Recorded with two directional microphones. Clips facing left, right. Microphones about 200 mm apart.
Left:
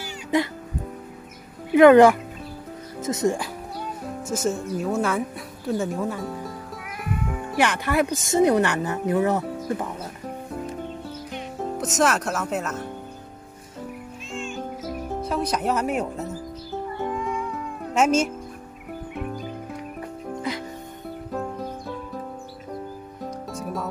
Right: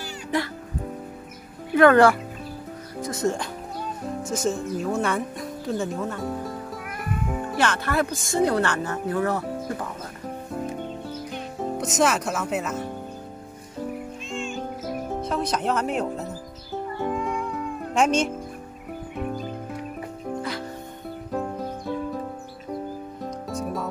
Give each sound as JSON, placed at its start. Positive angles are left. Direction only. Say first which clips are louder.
{"t": 0.0, "sound": "music", "louder": "left 3 dB", "side_deg": 20}
{"t": 1.7, "sound": "speech", "louder": "left 4 dB", "side_deg": 15}
{"t": 4.2, "sound": "speech", "louder": "left 1 dB", "side_deg": 5}
{"t": 7.5, "sound": "speech", "louder": "left 3 dB", "side_deg": 15}
{"t": 11.5, "sound": "speech", "louder": "even", "side_deg": 0}
{"t": 14.3, "sound": "music", "louder": "right 1 dB", "side_deg": 0}
{"t": 15.2, "sound": "speech", "louder": "left 1 dB", "side_deg": 10}
{"t": 16.7, "sound": "cat", "louder": "right 1 dB", "side_deg": 0}
{"t": 21.3, "sound": "music", "louder": "right 2 dB", "side_deg": 0}
{"t": 23.2, "sound": "music", "louder": "right 1 dB", "side_deg": 0}